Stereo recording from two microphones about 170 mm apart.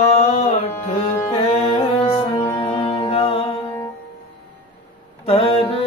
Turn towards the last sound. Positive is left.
turn(degrees=35)  # may be behind; listen again after turning